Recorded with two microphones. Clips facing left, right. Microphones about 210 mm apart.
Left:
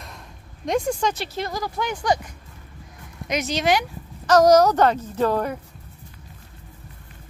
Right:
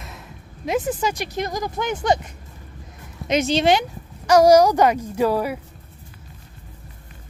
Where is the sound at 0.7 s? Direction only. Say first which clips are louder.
Even; 5° right (ahead or behind); by 2.1 s 20° right (ahead or behind).